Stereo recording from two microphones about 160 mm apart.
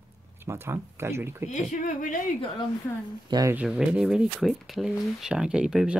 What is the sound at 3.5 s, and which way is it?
Speech, 5° right (ahead or behind).